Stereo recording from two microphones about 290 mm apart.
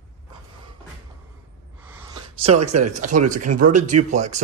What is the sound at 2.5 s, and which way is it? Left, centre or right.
Speech, right.